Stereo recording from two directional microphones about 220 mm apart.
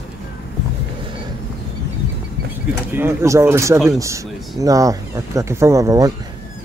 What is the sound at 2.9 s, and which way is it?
Speech, 10° right (ahead or behind).